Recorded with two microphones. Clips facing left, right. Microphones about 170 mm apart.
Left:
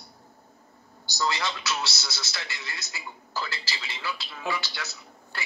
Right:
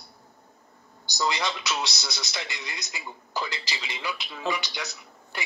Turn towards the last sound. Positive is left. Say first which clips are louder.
# right 2 dB
turn(degrees=-15)  # may be behind; listen again after turning